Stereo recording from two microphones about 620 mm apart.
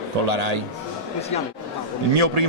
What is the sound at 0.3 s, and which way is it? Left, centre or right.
Speech, right.